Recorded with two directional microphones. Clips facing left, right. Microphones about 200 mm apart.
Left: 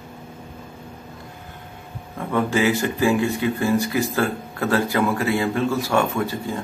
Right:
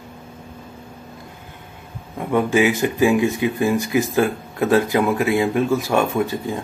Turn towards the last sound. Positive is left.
turn(degrees=-20)  # may be behind; listen again after turning